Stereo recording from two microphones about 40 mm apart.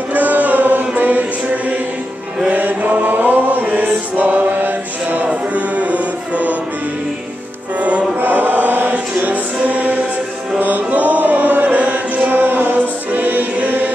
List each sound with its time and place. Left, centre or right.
0.1 s mantra: right
2.5 s chant: right
5.3 s music: right
8.2 s chant: right
8.9 s music: right